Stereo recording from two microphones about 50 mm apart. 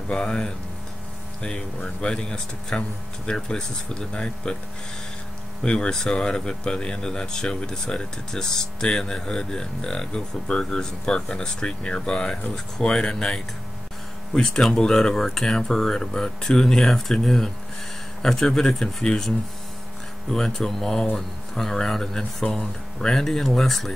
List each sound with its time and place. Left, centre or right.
0.1 s speech: centre
5.6 s speech: left
14.3 s speech: centre